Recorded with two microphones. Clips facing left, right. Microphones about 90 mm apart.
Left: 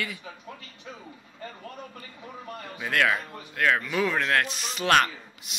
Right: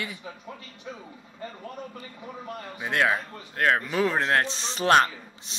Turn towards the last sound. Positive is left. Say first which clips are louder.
# right 1 dB
turn(degrees=-30)  # may be behind; listen again after turning